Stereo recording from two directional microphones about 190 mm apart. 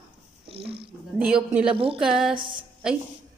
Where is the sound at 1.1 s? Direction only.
5° right (ahead or behind).